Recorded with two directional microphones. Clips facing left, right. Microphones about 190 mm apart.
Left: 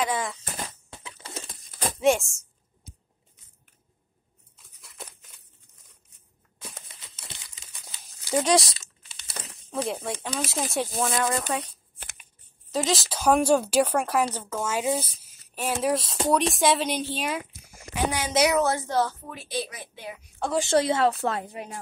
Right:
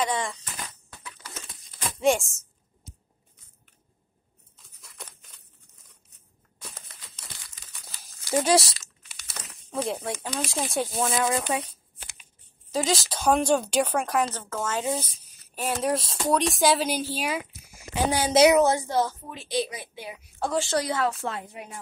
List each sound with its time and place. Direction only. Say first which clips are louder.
0.0 s speech: even; 5° left (ahead or behind)
0.8 s bird: left 2 dB; 25° left (ahead or behind)
2.0 s speech: left 1 dB; centre (ahead or behind)
4.6 s a sound: left 1 dB; centre (ahead or behind)
7.2 s crumpling: left 3 dB; 20° left (ahead or behind)
8.4 s speech: even; centre (ahead or behind)
8.7 s crumpling: even; 25° left (ahead or behind)
9.7 s speech: even; centre (ahead or behind)
12.0 s shuffling cards: left 2 dB; 50° left (ahead or behind)
12.7 s speech: even; centre (ahead or behind)
17.9 s speech: right 4 dB; 30° right (ahead or behind)
18.5 s a woman's voice: right 3 dB; 20° right (ahead or behind)
20.7 s a woman's voice: left 4 dB; 25° left (ahead or behind)